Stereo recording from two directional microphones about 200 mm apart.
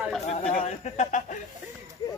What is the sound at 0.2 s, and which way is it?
Speech, 35° left (ahead or behind).